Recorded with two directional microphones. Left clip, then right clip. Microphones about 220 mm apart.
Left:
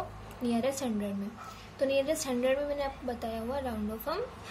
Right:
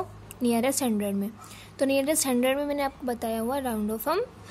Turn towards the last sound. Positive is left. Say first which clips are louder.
# right 7 dB
turn(degrees=-40)  # may be behind; listen again after turning